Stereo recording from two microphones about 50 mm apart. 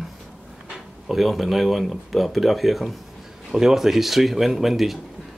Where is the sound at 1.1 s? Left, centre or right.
Centre.